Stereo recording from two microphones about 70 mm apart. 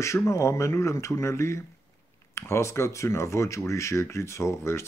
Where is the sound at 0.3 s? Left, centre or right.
Left.